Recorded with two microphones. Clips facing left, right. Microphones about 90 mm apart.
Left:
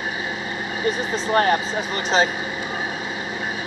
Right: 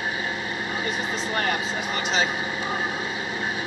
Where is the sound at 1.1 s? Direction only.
40° left (ahead or behind).